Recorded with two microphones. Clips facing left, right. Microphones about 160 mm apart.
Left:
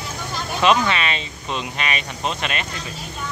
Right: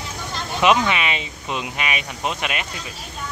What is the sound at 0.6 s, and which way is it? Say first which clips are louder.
Speech: even; 15° right (ahead or behind).